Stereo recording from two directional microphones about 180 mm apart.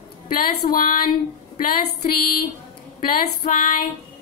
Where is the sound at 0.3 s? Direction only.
55° left (ahead or behind).